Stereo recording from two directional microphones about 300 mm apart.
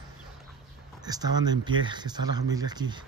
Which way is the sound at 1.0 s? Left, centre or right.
Centre.